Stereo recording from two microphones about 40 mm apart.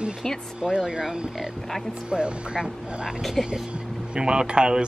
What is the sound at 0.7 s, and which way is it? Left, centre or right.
Speech, centre.